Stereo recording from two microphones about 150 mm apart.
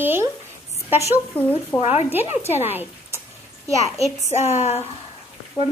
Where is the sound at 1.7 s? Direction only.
45° left (ahead or behind).